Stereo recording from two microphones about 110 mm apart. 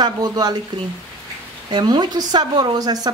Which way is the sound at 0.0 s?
40° right (ahead or behind).